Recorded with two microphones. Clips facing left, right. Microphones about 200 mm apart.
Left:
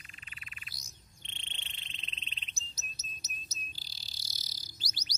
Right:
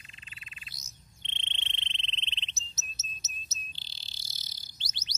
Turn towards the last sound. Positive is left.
turn(degrees=-25)  # may be behind; listen again after turning